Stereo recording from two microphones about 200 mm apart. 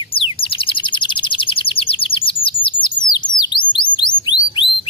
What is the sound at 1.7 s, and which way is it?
Bird, 25° left (ahead or behind).